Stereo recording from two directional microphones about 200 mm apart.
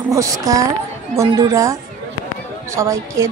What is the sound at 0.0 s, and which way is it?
A woman's voice, 15° right (ahead or behind).